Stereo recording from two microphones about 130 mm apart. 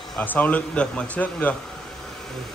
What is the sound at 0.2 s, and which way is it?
Speech, 15° left (ahead or behind).